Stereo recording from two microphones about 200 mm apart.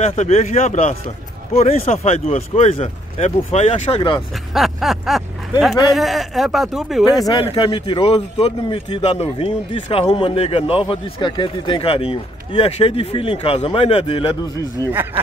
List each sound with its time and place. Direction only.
0.0 s speech: 30° left (ahead or behind)
4.6 s speech: centre (ahead or behind)
7.2 s speech: 20° left (ahead or behind)